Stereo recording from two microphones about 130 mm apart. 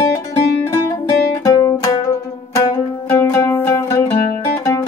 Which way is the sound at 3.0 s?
20° left (ahead or behind).